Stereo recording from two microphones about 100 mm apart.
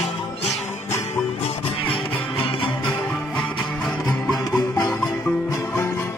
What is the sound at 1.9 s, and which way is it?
Music, 60° left (ahead or behind).